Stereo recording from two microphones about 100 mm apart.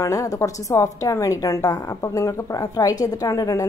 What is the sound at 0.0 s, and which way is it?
A woman's voice, 35° left (ahead or behind).